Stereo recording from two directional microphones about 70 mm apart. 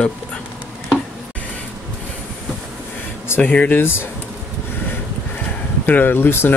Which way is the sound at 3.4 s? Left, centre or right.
Left.